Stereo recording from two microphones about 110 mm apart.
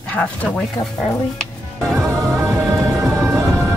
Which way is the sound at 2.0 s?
25° right (ahead or behind).